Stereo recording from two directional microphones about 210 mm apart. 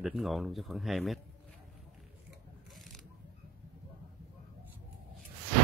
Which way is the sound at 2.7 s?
Centre (ahead or behind).